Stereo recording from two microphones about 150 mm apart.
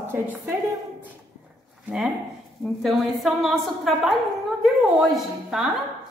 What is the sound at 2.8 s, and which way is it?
A woman's voice, centre (ahead or behind).